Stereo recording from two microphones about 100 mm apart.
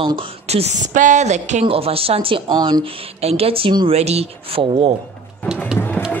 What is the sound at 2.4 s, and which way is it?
Speech, 45° right (ahead or behind).